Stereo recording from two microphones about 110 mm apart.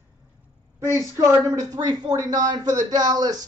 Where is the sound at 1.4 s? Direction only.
35° right (ahead or behind).